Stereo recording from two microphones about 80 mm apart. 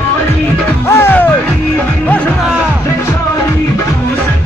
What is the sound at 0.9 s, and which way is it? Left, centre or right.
Music, left.